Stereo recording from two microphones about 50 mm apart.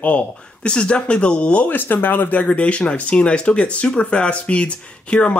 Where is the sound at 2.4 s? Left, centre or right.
Left.